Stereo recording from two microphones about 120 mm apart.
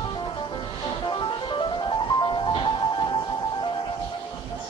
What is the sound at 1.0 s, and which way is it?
Music, 40° left (ahead or behind).